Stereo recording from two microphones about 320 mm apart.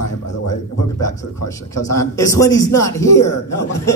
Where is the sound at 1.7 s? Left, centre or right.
Centre.